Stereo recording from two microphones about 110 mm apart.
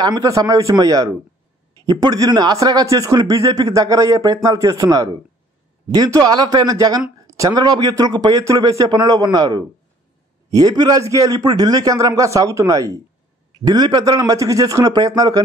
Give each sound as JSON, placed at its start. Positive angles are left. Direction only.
{"t": 0.0, "sound": "speech", "side_deg": -35}